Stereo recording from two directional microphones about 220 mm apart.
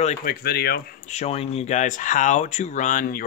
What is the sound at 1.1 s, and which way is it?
Speech, 30° left (ahead or behind).